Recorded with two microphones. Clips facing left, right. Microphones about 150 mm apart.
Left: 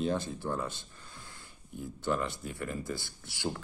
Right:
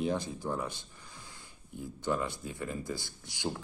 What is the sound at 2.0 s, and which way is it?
Speech, 15° right (ahead or behind).